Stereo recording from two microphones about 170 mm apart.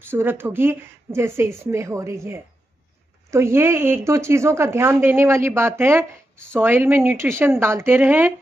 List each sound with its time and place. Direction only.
0.1 s a woman's voice: 15° right (ahead or behind)